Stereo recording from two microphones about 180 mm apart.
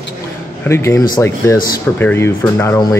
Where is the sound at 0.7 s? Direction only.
15° left (ahead or behind).